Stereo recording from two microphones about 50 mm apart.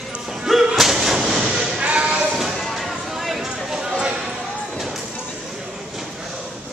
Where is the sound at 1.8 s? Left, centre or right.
Right.